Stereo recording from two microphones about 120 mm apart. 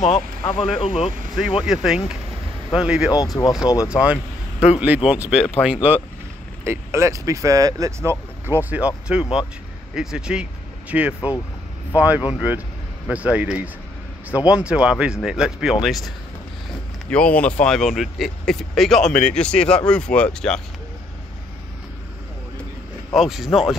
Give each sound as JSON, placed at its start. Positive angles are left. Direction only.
{"t": 0.0, "sound": "speech", "side_deg": 75}
{"t": 1.6, "sound": "speech", "side_deg": -5}
{"t": 3.6, "sound": "speech", "side_deg": 30}
{"t": 3.9, "sound": "speech", "side_deg": -10}
{"t": 17.1, "sound": "speech", "side_deg": 10}
{"t": 23.1, "sound": "speech", "side_deg": -5}